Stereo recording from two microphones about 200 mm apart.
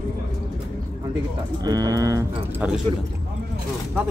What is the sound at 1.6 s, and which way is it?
Speech, 20° right (ahead or behind).